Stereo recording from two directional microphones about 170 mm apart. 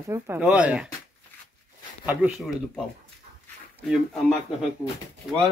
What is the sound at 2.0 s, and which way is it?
Speech, 10° right (ahead or behind).